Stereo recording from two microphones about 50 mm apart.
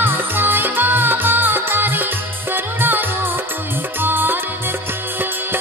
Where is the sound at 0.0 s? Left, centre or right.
Right.